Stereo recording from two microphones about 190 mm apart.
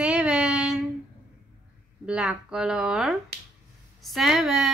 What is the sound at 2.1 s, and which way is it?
A woman's voice, 5° right (ahead or behind).